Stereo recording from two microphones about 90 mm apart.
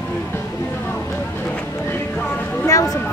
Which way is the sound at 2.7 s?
40° left (ahead or behind).